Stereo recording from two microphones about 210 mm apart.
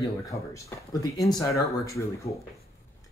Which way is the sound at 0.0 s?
15° left (ahead or behind).